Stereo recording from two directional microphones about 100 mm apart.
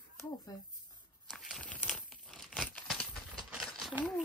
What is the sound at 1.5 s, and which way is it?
Crumpling, 10° left (ahead or behind).